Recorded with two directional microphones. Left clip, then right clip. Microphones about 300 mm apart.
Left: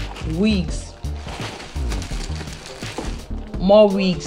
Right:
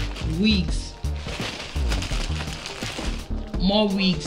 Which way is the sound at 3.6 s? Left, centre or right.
Centre.